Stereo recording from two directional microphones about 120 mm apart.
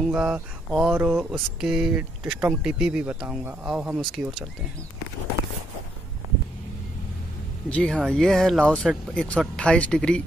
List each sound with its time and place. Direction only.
0.1 s speech: 10° right (ahead or behind)
1.6 s speech: 5° right (ahead or behind)
7.7 s speech: 5° left (ahead or behind)